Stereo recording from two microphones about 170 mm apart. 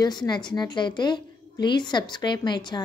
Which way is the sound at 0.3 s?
25° left (ahead or behind).